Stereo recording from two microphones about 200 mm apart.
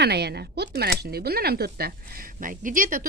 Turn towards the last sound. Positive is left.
turn(degrees=-45)  # may be behind; listen again after turning